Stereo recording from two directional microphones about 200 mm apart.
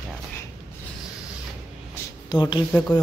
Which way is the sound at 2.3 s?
20° left (ahead or behind).